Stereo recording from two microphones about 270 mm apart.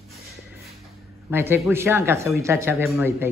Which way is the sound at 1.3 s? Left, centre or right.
Centre.